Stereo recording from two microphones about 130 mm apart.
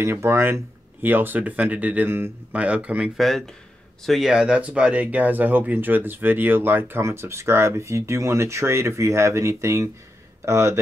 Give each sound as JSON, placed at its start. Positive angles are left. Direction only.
{"t": 0.0, "sound": "speech", "side_deg": -20}